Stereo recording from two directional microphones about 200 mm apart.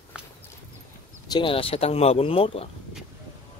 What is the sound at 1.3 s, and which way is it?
Speech, 25° left (ahead or behind).